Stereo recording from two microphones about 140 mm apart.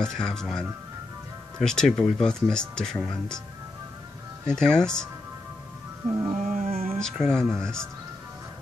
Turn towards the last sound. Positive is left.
turn(degrees=5)  # may be behind; listen again after turning